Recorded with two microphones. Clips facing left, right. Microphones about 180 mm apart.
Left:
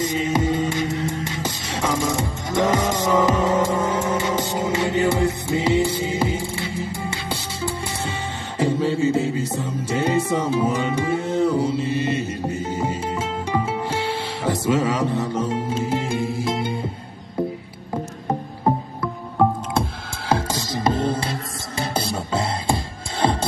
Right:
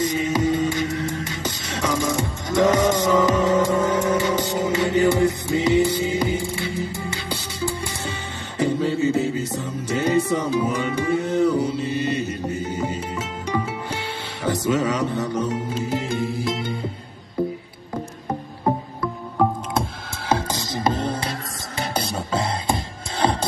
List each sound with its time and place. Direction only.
0.0 s music: 25° left (ahead or behind)
8.5 s music: 25° left (ahead or behind)
20.2 s music: 25° left (ahead or behind)